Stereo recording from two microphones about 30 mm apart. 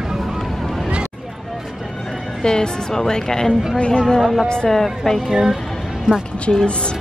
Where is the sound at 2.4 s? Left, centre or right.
Left.